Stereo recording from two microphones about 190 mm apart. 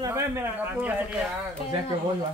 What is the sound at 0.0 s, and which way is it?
Speech, 15° right (ahead or behind).